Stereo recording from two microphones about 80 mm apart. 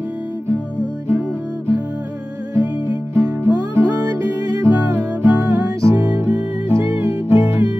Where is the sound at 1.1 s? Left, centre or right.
Right.